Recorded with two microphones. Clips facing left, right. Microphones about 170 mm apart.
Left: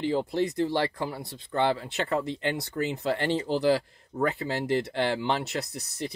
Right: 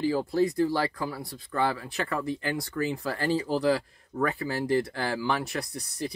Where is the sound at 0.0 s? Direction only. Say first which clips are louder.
Right 2 dB; 20° left (ahead or behind).